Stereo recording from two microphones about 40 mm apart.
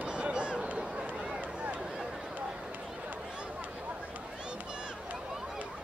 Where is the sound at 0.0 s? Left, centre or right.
Right.